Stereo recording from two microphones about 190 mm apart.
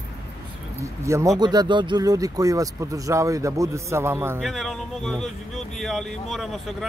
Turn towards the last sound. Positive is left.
turn(degrees=0)  # may be behind; listen again after turning